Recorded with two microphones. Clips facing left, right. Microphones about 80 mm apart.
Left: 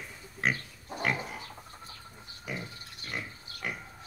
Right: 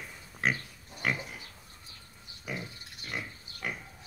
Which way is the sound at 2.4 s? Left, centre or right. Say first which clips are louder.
Even; centre.